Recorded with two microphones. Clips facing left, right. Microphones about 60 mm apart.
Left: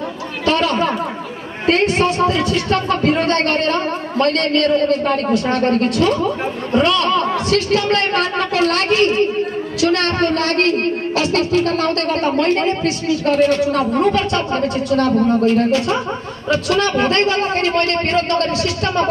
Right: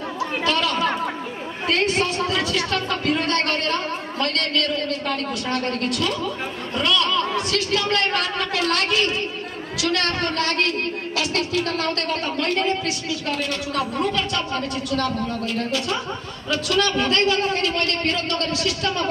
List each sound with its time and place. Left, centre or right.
0.5 s chatter: left
1.7 s speech: left